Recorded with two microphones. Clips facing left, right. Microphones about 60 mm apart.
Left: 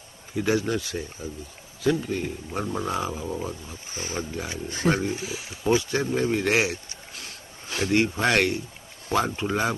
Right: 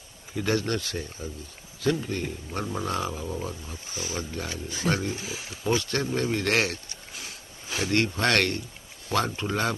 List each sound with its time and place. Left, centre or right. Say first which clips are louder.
0.3 s speech: left 2 dB; centre
3.9 s speech: left 1 dB; left
4.2 s speech: left 2 dB; centre
7.2 s a sound: even; centre
7.9 s speech: left 2 dB; centre